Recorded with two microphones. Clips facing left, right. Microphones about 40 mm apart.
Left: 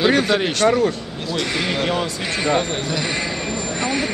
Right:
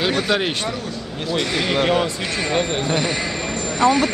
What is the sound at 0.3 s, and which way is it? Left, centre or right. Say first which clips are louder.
Speech: left 4 dB; centre.